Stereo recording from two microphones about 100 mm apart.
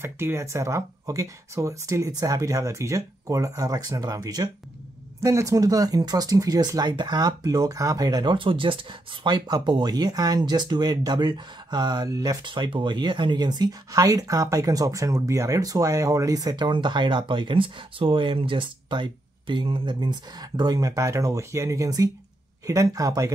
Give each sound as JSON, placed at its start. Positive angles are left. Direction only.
{"t": 0.0, "sound": "speech", "side_deg": -25}
{"t": 12.4, "sound": "speech", "side_deg": -55}